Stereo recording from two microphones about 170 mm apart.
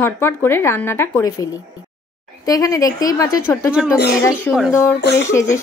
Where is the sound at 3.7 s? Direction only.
5° right (ahead or behind).